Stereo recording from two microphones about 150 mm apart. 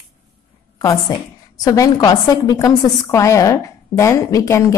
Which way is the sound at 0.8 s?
25° left (ahead or behind).